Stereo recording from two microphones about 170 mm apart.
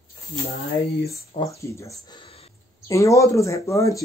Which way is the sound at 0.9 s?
70° left (ahead or behind).